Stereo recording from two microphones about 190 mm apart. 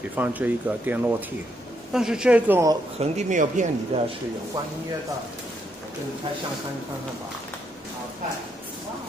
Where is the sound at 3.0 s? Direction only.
40° right (ahead or behind).